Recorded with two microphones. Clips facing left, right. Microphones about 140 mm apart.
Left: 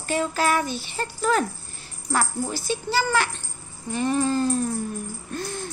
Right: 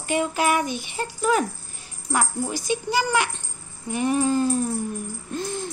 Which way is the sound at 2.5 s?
15° right (ahead or behind).